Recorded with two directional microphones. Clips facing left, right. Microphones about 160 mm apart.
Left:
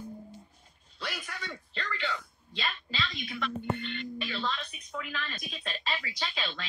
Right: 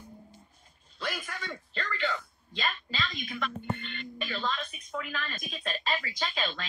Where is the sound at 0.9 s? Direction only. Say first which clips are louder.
Right 3 dB; 50° right (ahead or behind).